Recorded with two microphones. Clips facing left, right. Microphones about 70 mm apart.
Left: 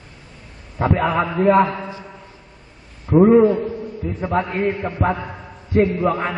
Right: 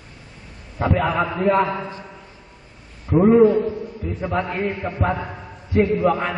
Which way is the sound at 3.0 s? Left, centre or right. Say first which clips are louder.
Left 1 dB; centre.